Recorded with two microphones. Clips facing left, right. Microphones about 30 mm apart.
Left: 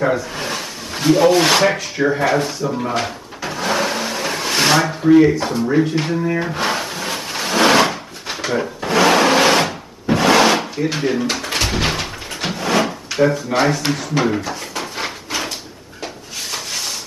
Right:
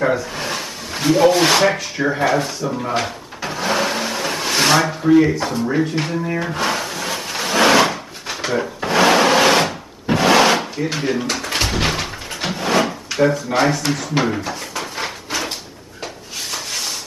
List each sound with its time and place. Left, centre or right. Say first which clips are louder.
0.0 s speech: even; centre
3.0 s a sound: even; centre
8.5 s drawer open or close: even; centre
11.3 s pigeon: even; centre
11.7 s drawer open or close: even; centre
13.5 s speech: even; centre
13.7 s speech: even; centre
14.1 s speech: left 2 dB; centre
14.7 s a sound: even; centre